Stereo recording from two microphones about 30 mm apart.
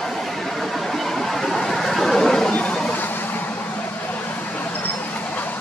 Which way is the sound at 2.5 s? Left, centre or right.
Left.